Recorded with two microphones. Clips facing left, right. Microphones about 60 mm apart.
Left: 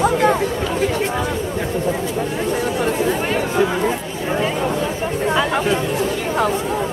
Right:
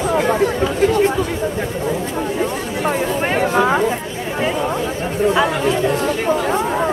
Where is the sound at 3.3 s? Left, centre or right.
Right.